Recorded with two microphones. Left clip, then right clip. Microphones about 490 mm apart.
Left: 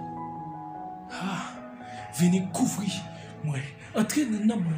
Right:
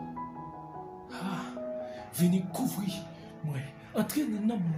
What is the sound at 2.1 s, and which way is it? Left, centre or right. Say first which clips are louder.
Speech: left 5 dB; right.